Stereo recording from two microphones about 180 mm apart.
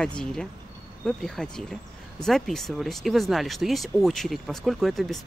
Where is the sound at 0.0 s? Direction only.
5° left (ahead or behind).